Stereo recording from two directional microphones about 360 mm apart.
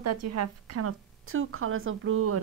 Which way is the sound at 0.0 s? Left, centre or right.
Right.